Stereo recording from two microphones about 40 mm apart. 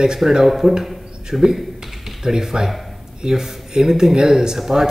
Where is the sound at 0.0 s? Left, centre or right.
Centre.